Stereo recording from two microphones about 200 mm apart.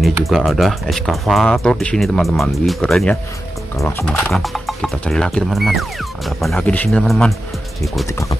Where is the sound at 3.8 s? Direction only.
15° left (ahead or behind).